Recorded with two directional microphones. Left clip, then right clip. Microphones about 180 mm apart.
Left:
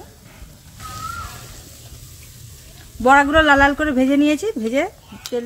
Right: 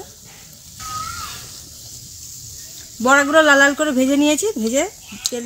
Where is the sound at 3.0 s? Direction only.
55° right (ahead or behind).